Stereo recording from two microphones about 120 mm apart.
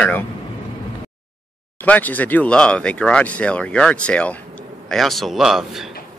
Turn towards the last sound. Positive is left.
turn(degrees=-5)  # may be behind; listen again after turning